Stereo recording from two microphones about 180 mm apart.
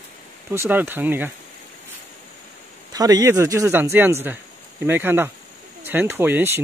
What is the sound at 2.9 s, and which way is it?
Speech, 20° right (ahead or behind).